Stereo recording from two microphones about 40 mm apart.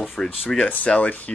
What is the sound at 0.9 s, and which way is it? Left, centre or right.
Speech, centre.